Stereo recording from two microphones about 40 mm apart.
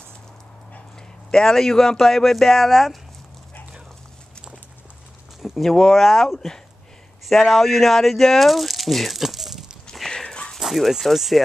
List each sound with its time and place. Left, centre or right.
1.3 s speech: centre
5.6 s speech: centre
10.0 s a sound: left
10.6 s speech: centre